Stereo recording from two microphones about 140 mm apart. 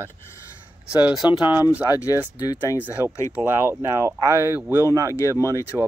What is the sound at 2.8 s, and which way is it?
Speech, 15° right (ahead or behind).